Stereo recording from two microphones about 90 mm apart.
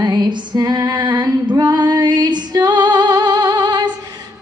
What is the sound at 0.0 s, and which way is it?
Female singing, 50° right (ahead or behind).